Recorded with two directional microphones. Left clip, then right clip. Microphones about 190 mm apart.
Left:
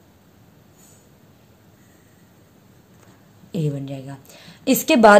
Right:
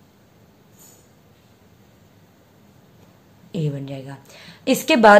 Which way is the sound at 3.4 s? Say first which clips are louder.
Left 1 dB; 20° left (ahead or behind).